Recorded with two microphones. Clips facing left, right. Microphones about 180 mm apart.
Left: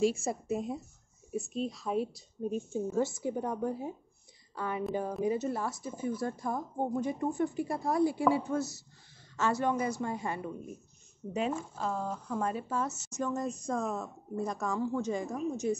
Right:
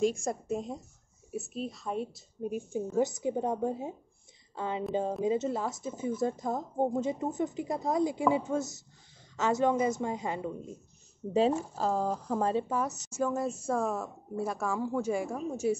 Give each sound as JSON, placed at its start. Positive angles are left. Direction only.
{"t": 0.0, "sound": "speech", "side_deg": 5}
{"t": 2.4, "sound": "a woman's voice", "side_deg": -10}
{"t": 11.3, "sound": "speech", "side_deg": -35}
{"t": 12.6, "sound": "a woman's voice", "side_deg": -15}